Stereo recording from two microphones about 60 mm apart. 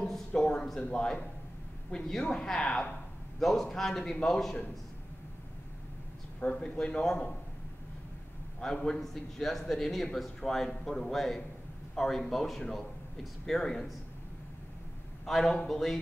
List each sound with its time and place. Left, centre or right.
0.3 s a sound: centre
0.8 s a man's voice: centre
3.3 s a man's voice: centre
6.4 s a man's voice: centre
8.5 s a man's voice: centre
15.2 s a man's voice: centre